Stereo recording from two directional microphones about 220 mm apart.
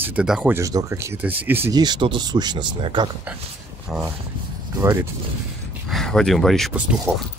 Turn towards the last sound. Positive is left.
turn(degrees=0)  # may be behind; listen again after turning